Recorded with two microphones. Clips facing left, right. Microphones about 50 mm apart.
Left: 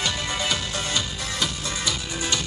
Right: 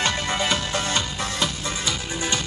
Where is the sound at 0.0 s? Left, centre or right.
Right.